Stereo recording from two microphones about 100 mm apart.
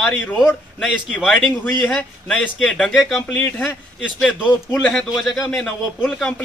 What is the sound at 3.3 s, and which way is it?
Speech, 15° left (ahead or behind).